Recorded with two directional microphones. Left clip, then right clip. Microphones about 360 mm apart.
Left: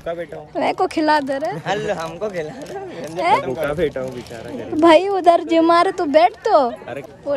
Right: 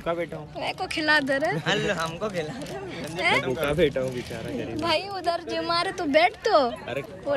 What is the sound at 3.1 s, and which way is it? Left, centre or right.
Speech, centre.